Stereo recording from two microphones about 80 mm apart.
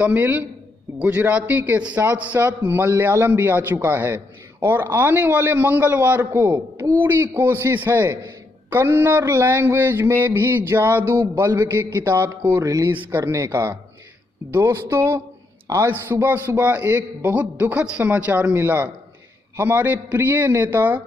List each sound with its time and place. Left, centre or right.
0.0 s a man's voice: right
12.6 s speech: right
12.9 s a man's voice: right
13.2 s a man's voice: right
15.7 s a man's voice: right
16.4 s a man's voice: right